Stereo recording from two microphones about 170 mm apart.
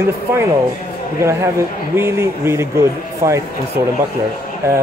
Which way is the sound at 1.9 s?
15° right (ahead or behind).